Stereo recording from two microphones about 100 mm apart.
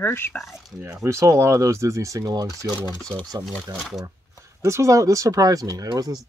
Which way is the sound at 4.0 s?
35° right (ahead or behind).